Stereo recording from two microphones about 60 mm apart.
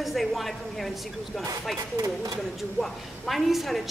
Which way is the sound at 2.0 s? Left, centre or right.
Right.